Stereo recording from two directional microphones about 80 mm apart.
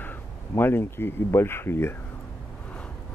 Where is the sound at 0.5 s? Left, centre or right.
Left.